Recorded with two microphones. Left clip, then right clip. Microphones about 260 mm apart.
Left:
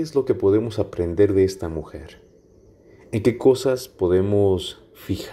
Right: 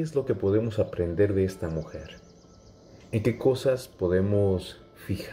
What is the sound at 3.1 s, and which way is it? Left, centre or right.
Speech, centre.